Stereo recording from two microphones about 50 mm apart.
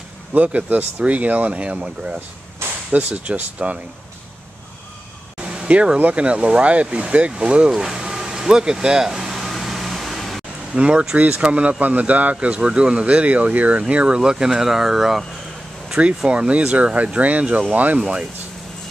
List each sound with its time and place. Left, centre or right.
0.3 s speech: right
5.4 s a sound: right
5.9 s speech: right
7.7 s air conditioning: centre
10.7 s speech: right
16.3 s speech: right
17.9 s speech: centre